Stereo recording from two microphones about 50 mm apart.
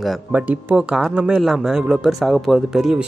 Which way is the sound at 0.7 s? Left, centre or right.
Centre.